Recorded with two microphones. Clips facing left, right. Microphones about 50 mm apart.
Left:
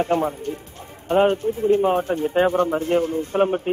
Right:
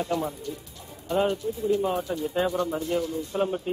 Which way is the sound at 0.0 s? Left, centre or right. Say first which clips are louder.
Left 7 dB; left.